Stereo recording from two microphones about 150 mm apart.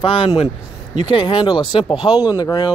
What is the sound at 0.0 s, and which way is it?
Speech, 35° left (ahead or behind).